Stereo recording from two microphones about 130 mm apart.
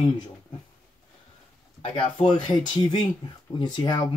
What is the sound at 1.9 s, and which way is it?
Speech, 45° left (ahead or behind).